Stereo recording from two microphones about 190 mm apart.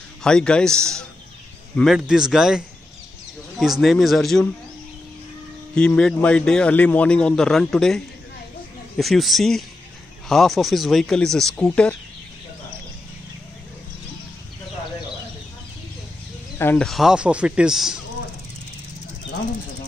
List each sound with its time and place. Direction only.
0.2 s a man's voice: 5° left (ahead or behind)
5.8 s a man's voice: 5° left (ahead or behind)
16.5 s a man's voice: 10° left (ahead or behind)